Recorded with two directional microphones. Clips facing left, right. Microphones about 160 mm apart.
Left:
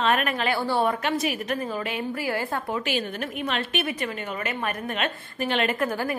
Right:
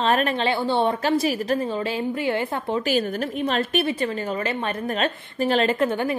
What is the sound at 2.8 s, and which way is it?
A woman's voice, 40° right (ahead or behind).